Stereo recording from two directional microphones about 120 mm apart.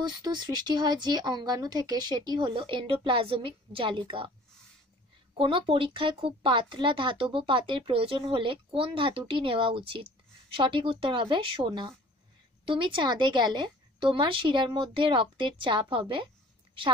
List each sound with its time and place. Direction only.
0.0 s speech: 35° right (ahead or behind)
5.4 s speech: 45° right (ahead or behind)